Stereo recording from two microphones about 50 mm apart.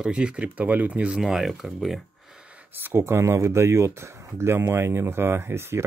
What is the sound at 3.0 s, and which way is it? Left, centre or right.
Speech, right.